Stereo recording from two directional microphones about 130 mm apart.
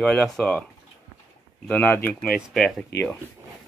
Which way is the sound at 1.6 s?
10° left (ahead or behind).